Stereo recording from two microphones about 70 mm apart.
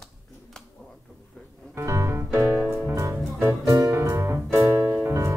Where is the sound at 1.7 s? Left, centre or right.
Right.